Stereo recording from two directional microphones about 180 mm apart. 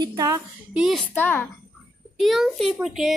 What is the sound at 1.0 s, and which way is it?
Speech, 10° left (ahead or behind).